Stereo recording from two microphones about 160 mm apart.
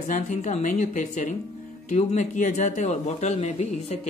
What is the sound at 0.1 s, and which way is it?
Speech, 45° left (ahead or behind).